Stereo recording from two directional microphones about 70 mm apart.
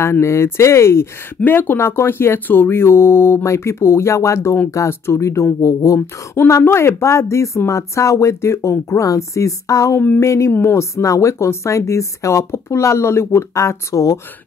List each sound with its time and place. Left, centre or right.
0.0 s speech: left
1.4 s speech: left
5.9 s speech: left
9.9 s a sound: left
10.2 s speech: left